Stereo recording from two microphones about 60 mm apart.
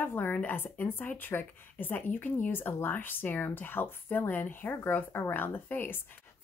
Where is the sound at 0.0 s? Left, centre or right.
Left.